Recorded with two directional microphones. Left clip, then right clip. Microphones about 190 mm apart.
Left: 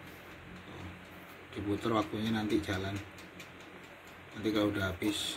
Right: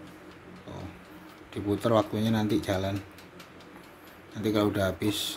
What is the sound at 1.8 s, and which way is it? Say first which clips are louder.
Speech: right 8 dB; 65° right (ahead or behind).